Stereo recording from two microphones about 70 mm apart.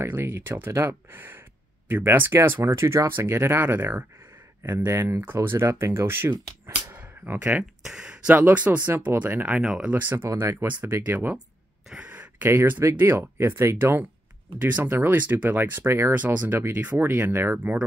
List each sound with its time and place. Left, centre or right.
0.0 s speech: right
6.9 s a sound: right
7.8 s speech: centre
8.1 s speech: right
9.6 s speech: centre
9.8 s speech: right
10.1 s speech: right
11.0 s speech: right
12.0 s a sound: right
12.9 s speech: right